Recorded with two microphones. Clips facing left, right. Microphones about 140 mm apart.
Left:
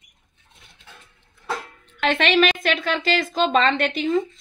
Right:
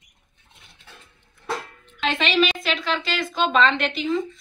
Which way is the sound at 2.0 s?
60° left (ahead or behind).